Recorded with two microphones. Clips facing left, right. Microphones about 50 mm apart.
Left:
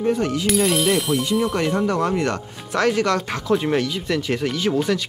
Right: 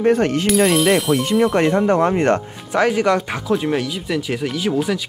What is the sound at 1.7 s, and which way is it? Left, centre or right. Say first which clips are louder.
Speech: right 5 dB; right.